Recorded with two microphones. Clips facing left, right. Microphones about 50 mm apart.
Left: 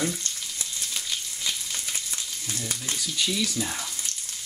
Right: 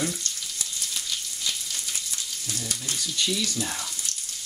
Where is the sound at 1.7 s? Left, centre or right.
Left.